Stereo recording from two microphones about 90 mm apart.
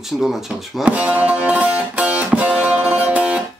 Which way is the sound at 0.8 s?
15° right (ahead or behind).